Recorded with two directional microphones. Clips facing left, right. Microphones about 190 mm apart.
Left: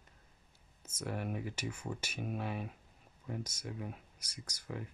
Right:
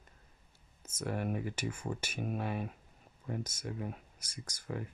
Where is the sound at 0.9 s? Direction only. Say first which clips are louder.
Right 3 dB; 50° right (ahead or behind).